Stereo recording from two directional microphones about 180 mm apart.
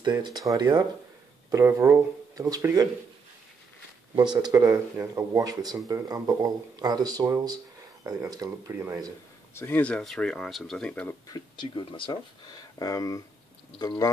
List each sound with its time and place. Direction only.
0.0 s speech: 25° right (ahead or behind)
4.1 s speech: 25° right (ahead or behind)
9.6 s speech: 10° left (ahead or behind)
11.2 s speech: 25° left (ahead or behind)